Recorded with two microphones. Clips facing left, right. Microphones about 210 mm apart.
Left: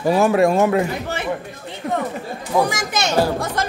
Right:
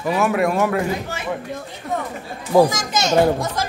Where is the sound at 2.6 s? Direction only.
65° left (ahead or behind).